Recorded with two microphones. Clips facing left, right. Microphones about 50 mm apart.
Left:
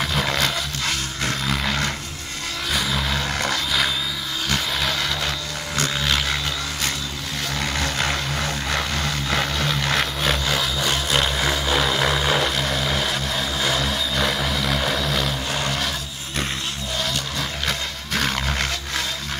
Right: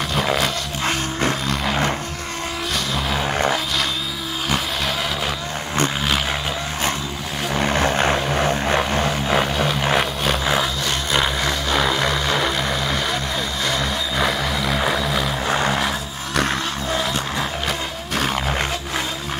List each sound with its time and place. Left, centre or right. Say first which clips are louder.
0.1 s dog: right 6 dB; centre
3.1 s vehicle: right 4 dB; centre
7.5 s vehicle: right 7 dB; right; by 10.7 s centre
10.8 s vehicle: right 1 dB; centre
15.4 s vehicle: right 5 dB; right
17.6 s music: right 2 dB; centre